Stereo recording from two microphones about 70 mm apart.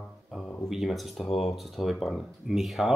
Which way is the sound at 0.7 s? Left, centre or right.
Centre.